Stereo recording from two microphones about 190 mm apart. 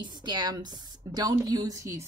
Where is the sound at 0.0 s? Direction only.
20° right (ahead or behind).